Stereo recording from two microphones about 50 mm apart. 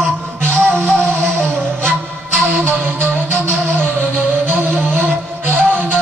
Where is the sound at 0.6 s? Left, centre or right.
Right.